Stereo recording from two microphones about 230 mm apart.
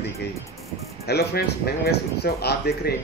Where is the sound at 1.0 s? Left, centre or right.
Left.